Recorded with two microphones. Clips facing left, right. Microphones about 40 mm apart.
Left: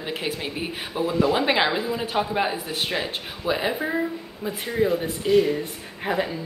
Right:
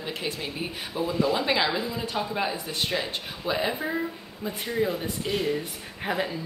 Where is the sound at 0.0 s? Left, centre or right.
Left.